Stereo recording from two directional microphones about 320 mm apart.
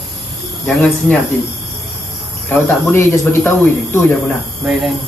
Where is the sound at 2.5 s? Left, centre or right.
Centre.